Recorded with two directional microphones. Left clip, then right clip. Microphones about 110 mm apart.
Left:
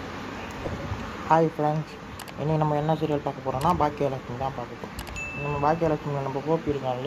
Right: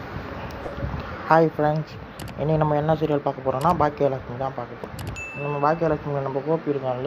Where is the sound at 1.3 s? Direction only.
30° right (ahead or behind).